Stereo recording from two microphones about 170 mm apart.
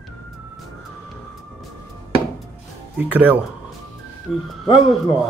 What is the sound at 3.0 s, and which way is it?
Speech, 10° right (ahead or behind).